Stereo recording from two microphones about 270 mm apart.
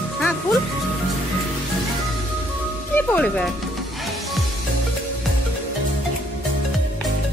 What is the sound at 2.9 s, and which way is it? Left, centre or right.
Music, centre.